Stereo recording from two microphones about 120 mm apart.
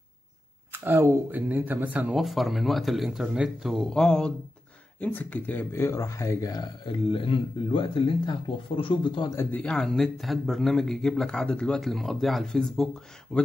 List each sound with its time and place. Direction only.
0.7 s speech: 20° right (ahead or behind)
2.1 s speech: centre (ahead or behind); by 9.3 s 40° left (ahead or behind)
9.3 s speech: 20° left (ahead or behind)
9.6 s speech: 5° left (ahead or behind)